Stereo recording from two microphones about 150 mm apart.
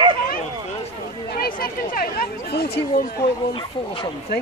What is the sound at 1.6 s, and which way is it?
Speech, 70° left (ahead or behind).